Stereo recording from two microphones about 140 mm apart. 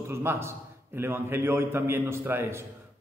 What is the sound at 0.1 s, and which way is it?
A man's voice, 15° right (ahead or behind).